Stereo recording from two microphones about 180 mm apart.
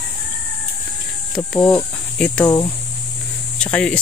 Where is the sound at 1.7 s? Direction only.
5° left (ahead or behind).